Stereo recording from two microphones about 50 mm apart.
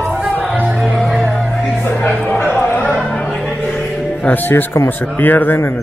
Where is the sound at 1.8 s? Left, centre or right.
Left.